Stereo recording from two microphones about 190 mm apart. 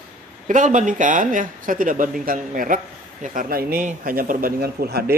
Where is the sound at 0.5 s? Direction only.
40° right (ahead or behind).